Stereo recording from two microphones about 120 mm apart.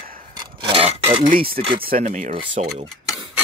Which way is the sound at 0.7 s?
50° right (ahead or behind).